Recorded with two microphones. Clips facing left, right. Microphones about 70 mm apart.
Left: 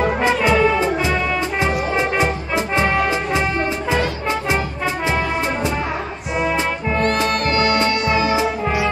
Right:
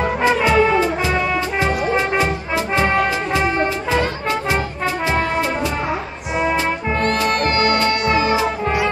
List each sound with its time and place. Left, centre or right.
0.3 s music: right
7.2 s music: right